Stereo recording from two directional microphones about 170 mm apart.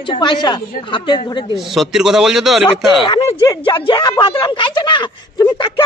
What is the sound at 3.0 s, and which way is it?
Speech, 30° left (ahead or behind).